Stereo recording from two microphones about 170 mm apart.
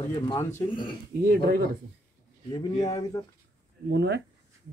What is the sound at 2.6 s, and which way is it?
Speech, 20° left (ahead or behind).